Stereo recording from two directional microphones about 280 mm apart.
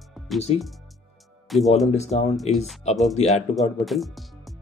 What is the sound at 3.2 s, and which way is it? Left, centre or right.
Speech, left.